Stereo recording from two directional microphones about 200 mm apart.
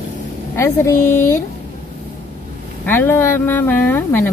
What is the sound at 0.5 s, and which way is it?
Speech, 15° left (ahead or behind).